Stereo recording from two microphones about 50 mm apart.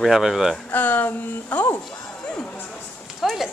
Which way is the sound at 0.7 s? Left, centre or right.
Left.